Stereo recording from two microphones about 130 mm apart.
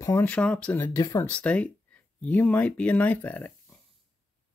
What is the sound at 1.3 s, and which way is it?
Speech, 10° left (ahead or behind).